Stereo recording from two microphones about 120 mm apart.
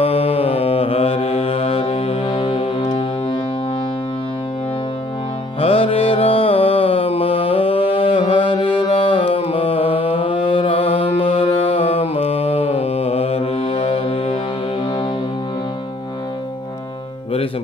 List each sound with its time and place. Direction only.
0.0 s mantra: 55° left (ahead or behind)
5.6 s music: 55° left (ahead or behind)